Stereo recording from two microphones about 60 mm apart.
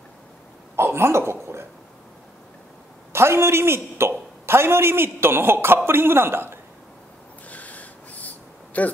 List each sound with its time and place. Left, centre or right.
0.7 s speech: right
3.1 s a woman's voice: right
7.4 s a sound: left